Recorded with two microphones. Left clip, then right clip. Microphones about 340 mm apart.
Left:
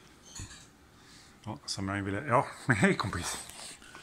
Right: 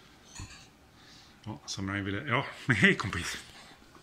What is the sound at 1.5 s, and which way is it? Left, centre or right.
Speech, centre.